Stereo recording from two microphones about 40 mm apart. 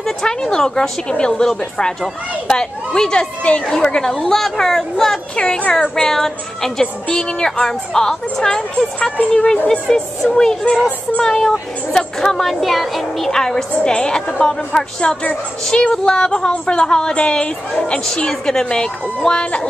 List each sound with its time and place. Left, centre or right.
0.0 s a woman's voice: centre
3.4 s a woman's voice: left
3.7 s a woman's voice: centre
5.3 s a woman's voice: left
5.8 s a woman's voice: centre
13.3 s a woman's voice: centre